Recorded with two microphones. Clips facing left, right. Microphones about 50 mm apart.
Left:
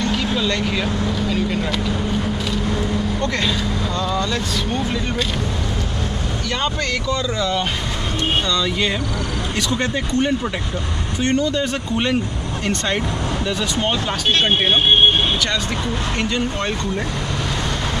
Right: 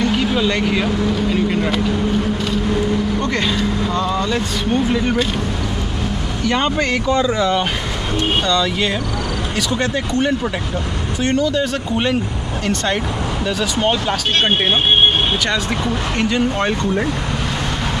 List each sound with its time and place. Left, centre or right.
0.4 s speech: centre
3.2 s speech: centre
6.5 s speech: right
8.5 s speech: centre
9.9 s speech: centre
16.2 s speech: centre